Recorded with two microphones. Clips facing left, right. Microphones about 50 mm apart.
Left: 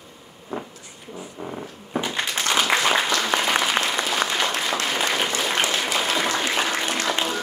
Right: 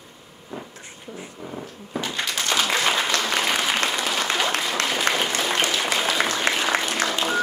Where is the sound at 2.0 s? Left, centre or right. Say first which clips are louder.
Even; centre.